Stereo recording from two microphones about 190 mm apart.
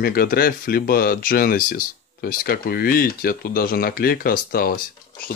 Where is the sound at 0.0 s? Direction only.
55° left (ahead or behind).